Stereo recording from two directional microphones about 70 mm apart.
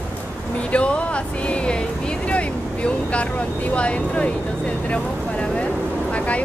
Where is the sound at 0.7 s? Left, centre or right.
Centre.